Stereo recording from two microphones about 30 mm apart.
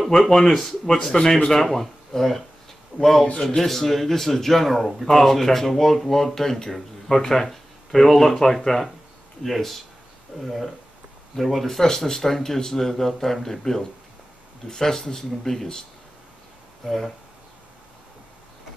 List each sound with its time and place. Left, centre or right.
0.3 s a man's voice: centre
5.0 s a man's voice: centre
11.6 s speech: centre
16.8 s a man's voice: centre